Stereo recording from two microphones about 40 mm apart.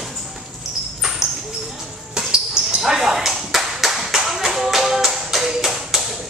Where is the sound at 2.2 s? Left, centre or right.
Right.